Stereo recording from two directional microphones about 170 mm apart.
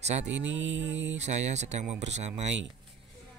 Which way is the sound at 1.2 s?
40° right (ahead or behind).